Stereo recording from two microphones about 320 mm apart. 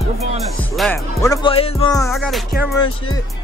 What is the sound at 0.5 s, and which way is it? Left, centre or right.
Speech, centre.